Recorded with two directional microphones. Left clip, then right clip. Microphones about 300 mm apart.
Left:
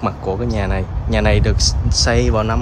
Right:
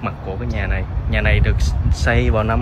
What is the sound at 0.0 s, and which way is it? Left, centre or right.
Speech, centre.